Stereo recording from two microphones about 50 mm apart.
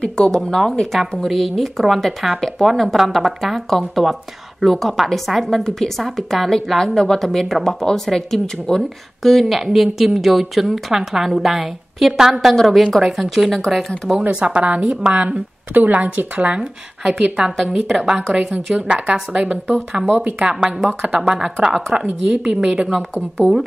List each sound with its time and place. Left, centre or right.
0.3 s a woman's voice: centre
14.3 s a woman's voice: right
14.8 s a woman's voice: centre
15.1 s a woman's voice: right
18.0 s a woman's voice: centre